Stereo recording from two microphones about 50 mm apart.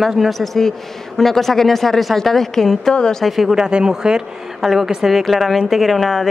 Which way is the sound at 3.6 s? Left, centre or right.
Centre.